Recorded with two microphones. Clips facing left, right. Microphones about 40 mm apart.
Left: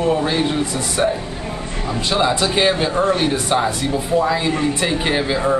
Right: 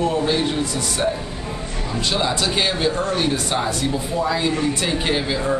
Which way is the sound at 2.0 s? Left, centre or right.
Centre.